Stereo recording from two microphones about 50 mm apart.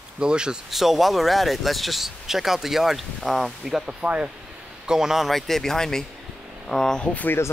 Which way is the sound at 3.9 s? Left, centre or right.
Right.